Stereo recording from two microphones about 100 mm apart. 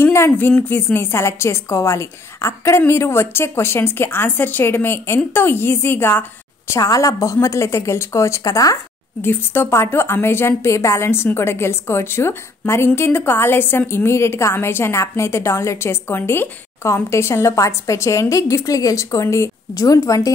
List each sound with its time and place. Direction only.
0.0 s a woman's voice: 25° left (ahead or behind)
9.2 s a woman's voice: 20° left (ahead or behind)